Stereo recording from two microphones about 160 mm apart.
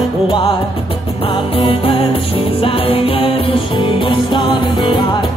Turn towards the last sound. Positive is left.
turn(degrees=30)  # may be behind; listen again after turning